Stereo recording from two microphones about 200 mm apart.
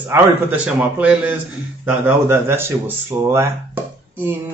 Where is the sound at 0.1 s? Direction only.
10° right (ahead or behind).